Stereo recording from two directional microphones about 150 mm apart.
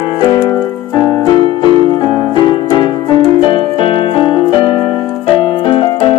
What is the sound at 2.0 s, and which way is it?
Music, 35° left (ahead or behind).